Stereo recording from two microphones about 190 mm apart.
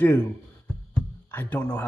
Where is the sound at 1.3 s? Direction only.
10° left (ahead or behind).